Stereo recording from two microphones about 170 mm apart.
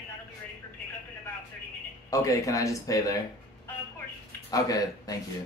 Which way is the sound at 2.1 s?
20° left (ahead or behind).